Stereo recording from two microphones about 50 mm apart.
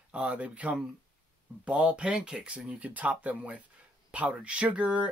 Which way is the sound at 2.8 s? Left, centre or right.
Right.